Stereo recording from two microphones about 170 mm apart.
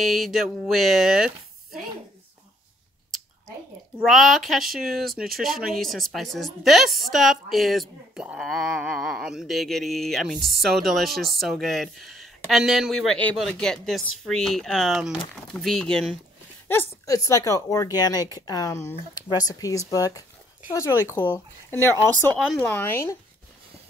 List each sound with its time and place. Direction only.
0.0 s speech: centre (ahead or behind)
4.0 s speech: centre (ahead or behind)
17.0 s speech: 20° left (ahead or behind)
22.6 s speech: 10° left (ahead or behind)